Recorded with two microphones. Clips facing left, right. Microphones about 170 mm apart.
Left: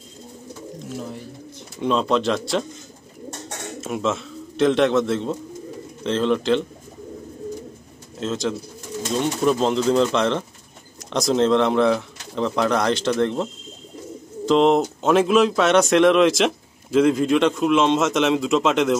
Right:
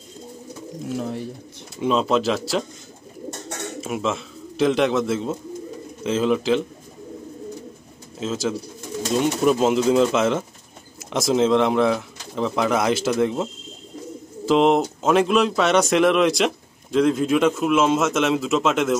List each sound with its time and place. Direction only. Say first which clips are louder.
0.9 s bird: right 5 dB; 65° right (ahead or behind)
1.8 s speech: even; 5° right (ahead or behind)
3.8 s speech: left 2 dB; centre (ahead or behind)
8.2 s speech: even; centre (ahead or behind)